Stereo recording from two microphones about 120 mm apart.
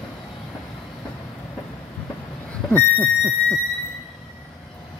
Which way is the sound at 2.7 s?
15° left (ahead or behind).